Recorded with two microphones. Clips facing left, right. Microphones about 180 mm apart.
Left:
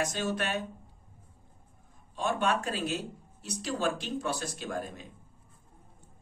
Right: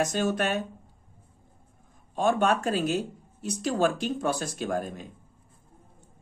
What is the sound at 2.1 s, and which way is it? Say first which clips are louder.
Speech: right 6 dB; 50° right (ahead or behind).